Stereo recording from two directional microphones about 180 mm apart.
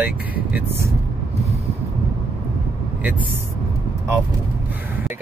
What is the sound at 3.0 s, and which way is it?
Speech, 10° right (ahead or behind).